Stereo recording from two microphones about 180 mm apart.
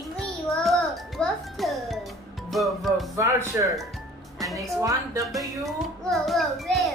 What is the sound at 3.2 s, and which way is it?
Speech, 20° right (ahead or behind).